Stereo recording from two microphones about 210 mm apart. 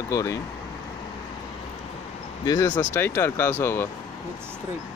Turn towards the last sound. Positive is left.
turn(degrees=10)  # may be behind; listen again after turning